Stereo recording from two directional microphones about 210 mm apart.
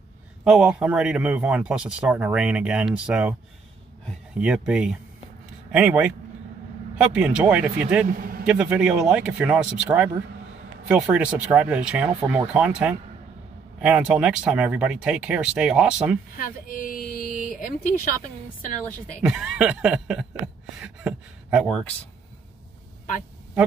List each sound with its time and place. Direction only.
0.4 s a man's voice: 5° right (ahead or behind)
8.2 s a sound: 45° right (ahead or behind)
8.5 s a man's voice: 5° right (ahead or behind)
16.3 s speech: 40° left (ahead or behind)
19.2 s a man's voice: 5° right (ahead or behind)